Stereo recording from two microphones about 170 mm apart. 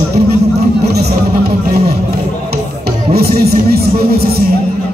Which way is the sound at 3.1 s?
65° right (ahead or behind).